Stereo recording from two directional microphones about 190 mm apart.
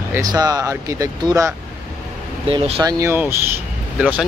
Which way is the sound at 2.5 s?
25° right (ahead or behind).